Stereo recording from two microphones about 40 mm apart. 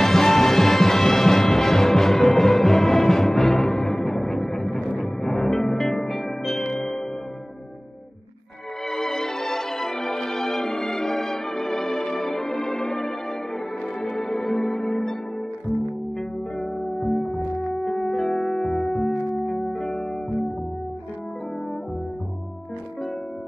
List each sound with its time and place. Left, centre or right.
0.0 s music: centre
8.8 s music: centre
16.2 s music: centre